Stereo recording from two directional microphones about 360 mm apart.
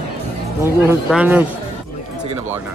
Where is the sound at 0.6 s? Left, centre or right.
Centre.